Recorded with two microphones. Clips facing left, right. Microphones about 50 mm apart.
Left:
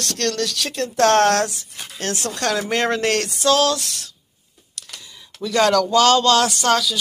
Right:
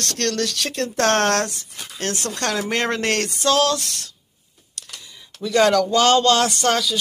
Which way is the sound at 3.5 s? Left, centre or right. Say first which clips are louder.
Left 1 dB; right.